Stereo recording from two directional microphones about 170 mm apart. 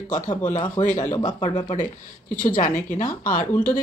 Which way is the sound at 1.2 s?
25° left (ahead or behind).